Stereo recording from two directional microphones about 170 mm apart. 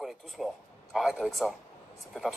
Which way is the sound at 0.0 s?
Centre (ahead or behind).